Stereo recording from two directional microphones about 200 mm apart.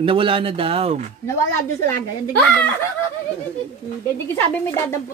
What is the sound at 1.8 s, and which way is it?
Speech, 10° left (ahead or behind).